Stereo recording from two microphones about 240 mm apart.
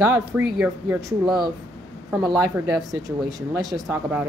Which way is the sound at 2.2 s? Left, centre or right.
Centre.